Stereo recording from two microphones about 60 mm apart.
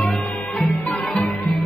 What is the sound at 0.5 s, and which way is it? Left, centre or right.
Music, centre.